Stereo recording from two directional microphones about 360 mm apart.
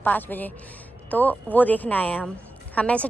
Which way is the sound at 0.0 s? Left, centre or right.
Centre.